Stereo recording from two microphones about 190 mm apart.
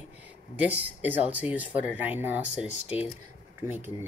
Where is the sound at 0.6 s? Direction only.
10° right (ahead or behind).